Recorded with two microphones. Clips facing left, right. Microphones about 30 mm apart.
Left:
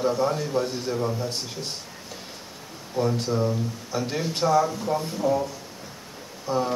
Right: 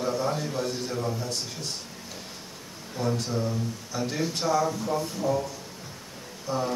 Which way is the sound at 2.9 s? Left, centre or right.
Centre.